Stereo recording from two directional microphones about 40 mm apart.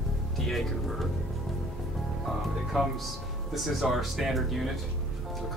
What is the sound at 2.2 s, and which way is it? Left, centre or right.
Music, centre.